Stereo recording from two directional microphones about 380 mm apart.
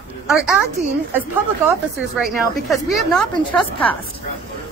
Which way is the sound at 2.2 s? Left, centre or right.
Centre.